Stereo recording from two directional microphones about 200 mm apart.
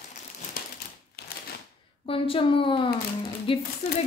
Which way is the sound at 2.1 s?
25° left (ahead or behind).